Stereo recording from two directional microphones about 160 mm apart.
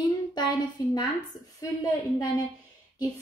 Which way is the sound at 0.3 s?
25° left (ahead or behind).